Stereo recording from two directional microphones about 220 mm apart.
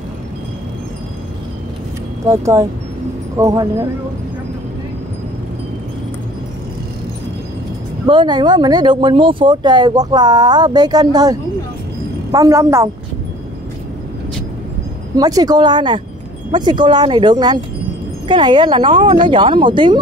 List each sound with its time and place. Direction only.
2.2 s a woman's voice: 15° right (ahead or behind)
8.1 s a woman's voice: 20° right (ahead or behind)
15.1 s speech: 15° right (ahead or behind)